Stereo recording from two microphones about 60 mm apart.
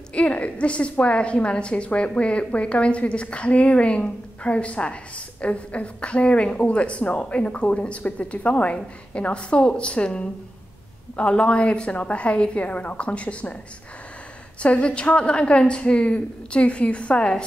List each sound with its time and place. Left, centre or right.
0.1 s a woman's voice: left
14.6 s a woman's voice: left